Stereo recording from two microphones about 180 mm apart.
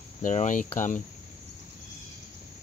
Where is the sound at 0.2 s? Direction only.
45° left (ahead or behind).